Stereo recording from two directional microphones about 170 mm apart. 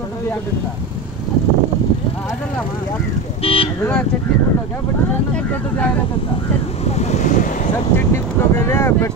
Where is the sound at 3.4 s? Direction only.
35° left (ahead or behind).